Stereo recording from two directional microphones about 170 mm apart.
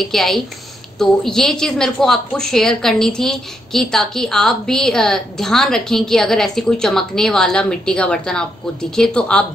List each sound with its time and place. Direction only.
0.0 s a woman's voice: centre (ahead or behind)